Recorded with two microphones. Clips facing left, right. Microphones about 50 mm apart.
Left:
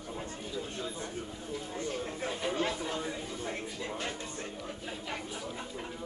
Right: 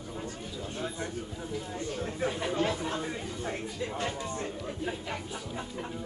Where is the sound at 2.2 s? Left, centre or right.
Right.